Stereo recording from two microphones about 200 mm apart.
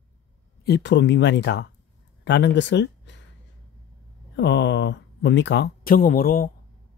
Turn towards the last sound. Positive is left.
turn(degrees=45)  # may be behind; listen again after turning